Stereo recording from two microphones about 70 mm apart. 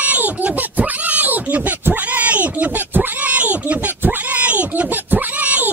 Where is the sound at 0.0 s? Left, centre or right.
Right.